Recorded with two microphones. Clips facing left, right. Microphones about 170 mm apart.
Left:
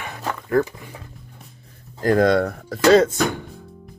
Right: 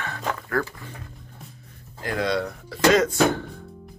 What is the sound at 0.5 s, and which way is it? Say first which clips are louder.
Speech: left 10 dB; 20° left (ahead or behind).